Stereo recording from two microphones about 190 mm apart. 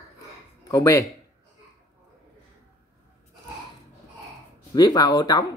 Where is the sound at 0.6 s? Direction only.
15° left (ahead or behind).